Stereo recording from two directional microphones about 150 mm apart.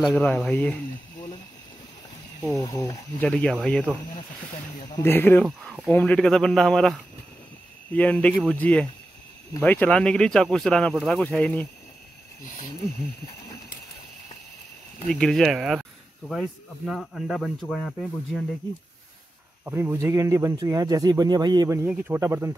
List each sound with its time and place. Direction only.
0.2 s speech: 5° left (ahead or behind)
2.5 s speech: 20° left (ahead or behind)
3.2 s speech: 10° left (ahead or behind)
5.0 s speech: 15° left (ahead or behind)
15.0 s speech: 5° left (ahead or behind)
19.6 s speech: 15° right (ahead or behind)
21.8 s speech: 10° right (ahead or behind)